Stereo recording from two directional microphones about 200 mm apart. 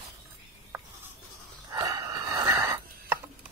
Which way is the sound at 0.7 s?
10° right (ahead or behind).